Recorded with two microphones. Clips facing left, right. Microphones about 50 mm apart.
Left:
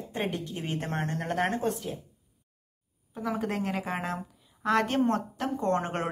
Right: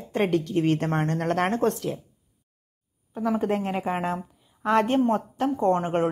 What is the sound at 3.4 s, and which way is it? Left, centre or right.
A woman's voice, right.